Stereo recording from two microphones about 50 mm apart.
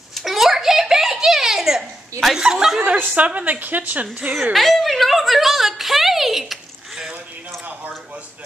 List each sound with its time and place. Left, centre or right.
0.1 s a sound: centre
2.3 s speech: centre
3.2 s a woman's voice: right
4.3 s a woman's voice: centre